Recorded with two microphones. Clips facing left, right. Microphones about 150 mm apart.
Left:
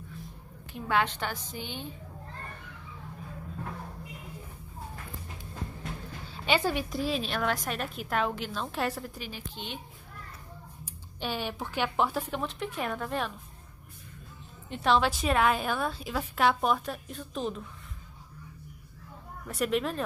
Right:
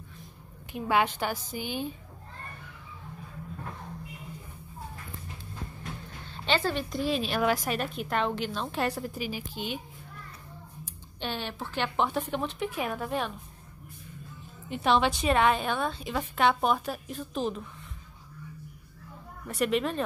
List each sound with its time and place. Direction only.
0.7 s a woman's voice: 15° right (ahead or behind)
6.2 s a woman's voice: 10° left (ahead or behind)
11.1 s a woman's voice: 10° left (ahead or behind)
14.7 s a woman's voice: centre (ahead or behind)
19.4 s a woman's voice: centre (ahead or behind)